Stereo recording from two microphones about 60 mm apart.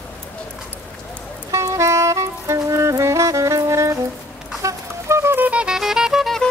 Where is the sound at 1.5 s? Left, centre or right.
Right.